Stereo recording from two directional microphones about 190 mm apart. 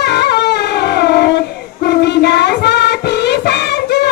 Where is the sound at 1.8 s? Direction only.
60° left (ahead or behind).